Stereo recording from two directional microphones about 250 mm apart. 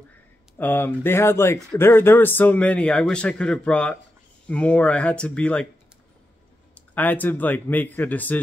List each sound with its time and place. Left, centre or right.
0.6 s speech: centre
6.7 s speech: centre